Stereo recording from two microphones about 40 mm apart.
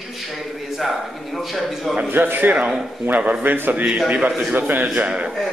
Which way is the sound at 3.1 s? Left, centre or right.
Right.